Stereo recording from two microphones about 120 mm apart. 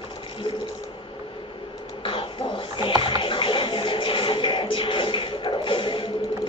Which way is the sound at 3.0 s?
45° left (ahead or behind).